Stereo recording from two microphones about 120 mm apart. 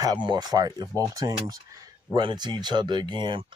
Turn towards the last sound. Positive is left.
turn(degrees=-40)  # may be behind; listen again after turning